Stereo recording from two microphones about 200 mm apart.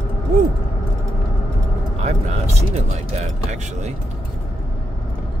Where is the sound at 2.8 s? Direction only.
35° right (ahead or behind).